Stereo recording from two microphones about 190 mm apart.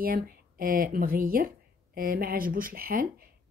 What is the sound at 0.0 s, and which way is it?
A woman's voice, 50° right (ahead or behind).